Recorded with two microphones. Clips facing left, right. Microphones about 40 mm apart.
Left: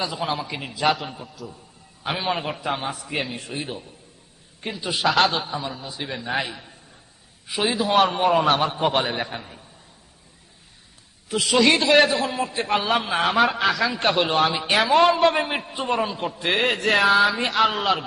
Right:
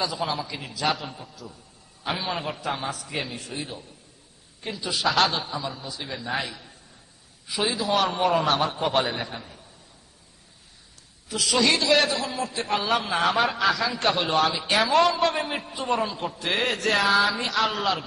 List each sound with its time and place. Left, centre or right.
0.1 s a man's voice: left
1.0 s a man's voice: centre
2.0 s a man's voice: left
5.0 s a man's voice: centre
5.9 s a man's voice: left
11.2 s a man's voice: left
13.7 s speech: centre
14.3 s a man's voice: left
17.4 s a man's voice: left